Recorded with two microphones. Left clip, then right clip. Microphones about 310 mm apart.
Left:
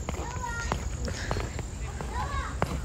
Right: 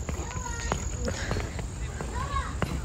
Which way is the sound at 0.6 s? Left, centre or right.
Centre.